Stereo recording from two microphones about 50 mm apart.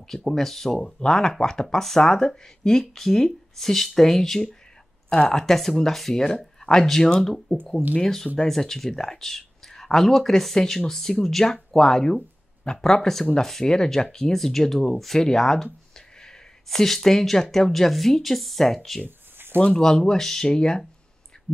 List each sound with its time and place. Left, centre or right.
0.1 s speech: centre
19.0 s a sound: right
19.6 s speech: centre